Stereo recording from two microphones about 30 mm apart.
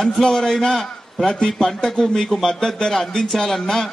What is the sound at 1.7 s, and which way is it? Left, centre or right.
Speech, left.